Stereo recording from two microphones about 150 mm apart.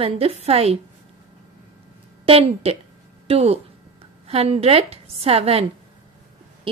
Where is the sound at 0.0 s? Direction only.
40° right (ahead or behind).